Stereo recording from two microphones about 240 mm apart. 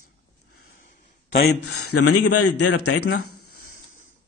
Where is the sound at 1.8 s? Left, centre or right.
Left.